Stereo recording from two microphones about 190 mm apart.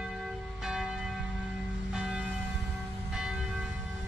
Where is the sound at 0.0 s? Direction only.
Centre (ahead or behind).